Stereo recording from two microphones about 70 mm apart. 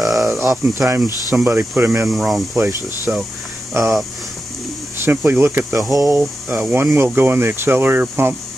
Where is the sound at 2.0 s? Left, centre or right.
Centre.